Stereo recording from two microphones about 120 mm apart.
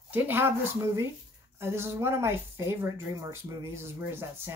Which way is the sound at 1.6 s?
20° right (ahead or behind).